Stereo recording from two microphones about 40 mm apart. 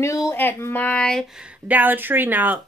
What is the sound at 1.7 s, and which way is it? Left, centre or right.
Speech, right.